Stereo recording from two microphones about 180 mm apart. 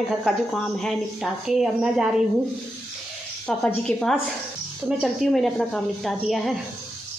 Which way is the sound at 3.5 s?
5° left (ahead or behind).